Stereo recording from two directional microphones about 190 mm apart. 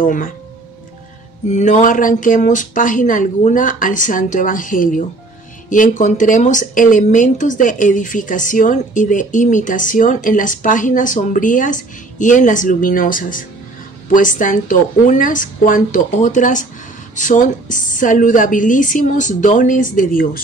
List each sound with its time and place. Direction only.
0.0 s speech: 45° left (ahead or behind)
1.5 s speech: 40° left (ahead or behind)